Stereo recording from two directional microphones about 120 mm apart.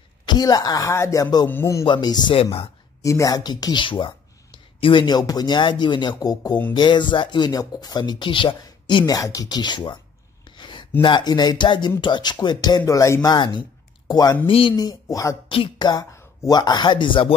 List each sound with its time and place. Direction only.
0.3 s speech: 35° left (ahead or behind)
1.9 s speech: 35° left (ahead or behind)
10.6 s a sound: 40° left (ahead or behind)
11.0 s speech: 40° left (ahead or behind)
15.4 s music: 45° left (ahead or behind)
15.9 s speech: 30° left (ahead or behind)